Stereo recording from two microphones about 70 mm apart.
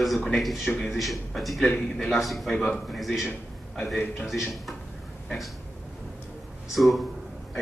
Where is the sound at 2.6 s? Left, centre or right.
Centre.